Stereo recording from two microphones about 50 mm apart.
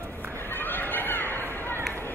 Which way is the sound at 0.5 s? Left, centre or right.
Left.